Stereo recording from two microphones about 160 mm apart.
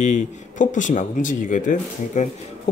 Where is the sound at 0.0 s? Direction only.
50° left (ahead or behind).